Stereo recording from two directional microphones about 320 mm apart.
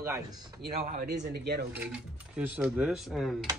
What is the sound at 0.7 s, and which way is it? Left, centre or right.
Speech, right.